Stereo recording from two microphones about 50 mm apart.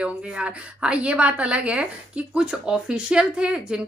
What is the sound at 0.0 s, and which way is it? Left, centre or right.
A woman's voice, right.